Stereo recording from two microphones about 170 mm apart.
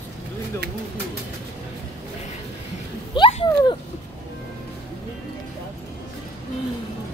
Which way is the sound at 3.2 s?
30° left (ahead or behind).